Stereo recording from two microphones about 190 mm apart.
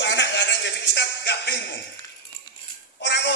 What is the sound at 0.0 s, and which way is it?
Music, 65° left (ahead or behind).